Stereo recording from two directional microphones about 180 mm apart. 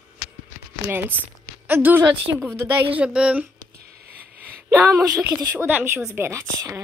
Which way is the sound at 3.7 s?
60° right (ahead or behind).